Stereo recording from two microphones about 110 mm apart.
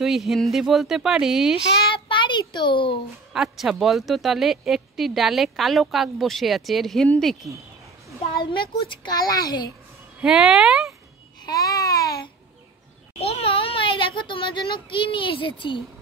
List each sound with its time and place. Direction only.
0.0 s a woman's voice: centre (ahead or behind)
1.9 s a child's voice: 50° left (ahead or behind)
3.3 s a woman's voice: 5° right (ahead or behind)
8.4 s a child's voice: 50° left (ahead or behind)
10.2 s a woman's voice: 5° right (ahead or behind)
11.4 s babbling: 35° left (ahead or behind)
13.2 s a child's voice: 65° left (ahead or behind)